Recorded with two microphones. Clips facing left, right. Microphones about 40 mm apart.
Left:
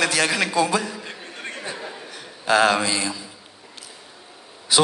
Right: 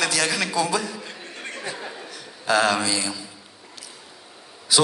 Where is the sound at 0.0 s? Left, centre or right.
Left.